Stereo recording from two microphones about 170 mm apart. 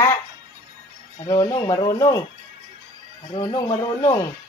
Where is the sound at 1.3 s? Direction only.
25° left (ahead or behind).